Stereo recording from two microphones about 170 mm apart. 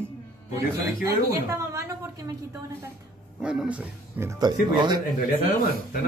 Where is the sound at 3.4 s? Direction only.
5° right (ahead or behind).